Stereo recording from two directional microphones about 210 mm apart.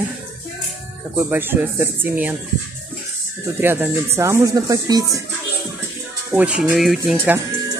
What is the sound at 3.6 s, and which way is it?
Speech, 10° right (ahead or behind).